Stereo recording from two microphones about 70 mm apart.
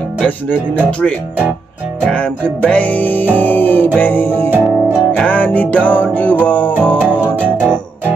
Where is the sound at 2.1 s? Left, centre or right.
Centre.